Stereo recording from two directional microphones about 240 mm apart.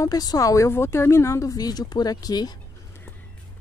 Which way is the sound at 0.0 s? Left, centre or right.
Centre.